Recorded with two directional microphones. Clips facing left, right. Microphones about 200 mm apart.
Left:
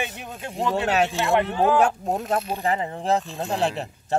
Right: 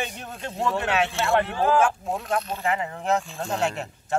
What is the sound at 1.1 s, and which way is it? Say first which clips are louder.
Speech: left 1 dB; 15° left (ahead or behind).